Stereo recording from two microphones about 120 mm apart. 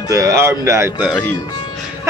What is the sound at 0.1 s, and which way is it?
Speech, 25° right (ahead or behind).